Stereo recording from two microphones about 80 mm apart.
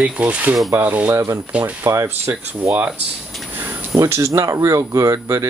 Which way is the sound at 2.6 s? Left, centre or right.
Right.